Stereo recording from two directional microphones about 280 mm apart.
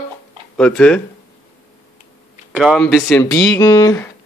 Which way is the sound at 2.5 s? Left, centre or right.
Centre.